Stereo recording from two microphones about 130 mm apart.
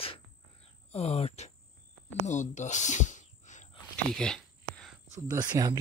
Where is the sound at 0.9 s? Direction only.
55° left (ahead or behind).